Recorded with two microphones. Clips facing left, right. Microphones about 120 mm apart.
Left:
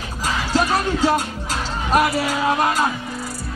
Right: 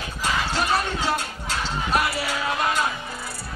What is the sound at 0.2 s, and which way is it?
Music, 40° left (ahead or behind).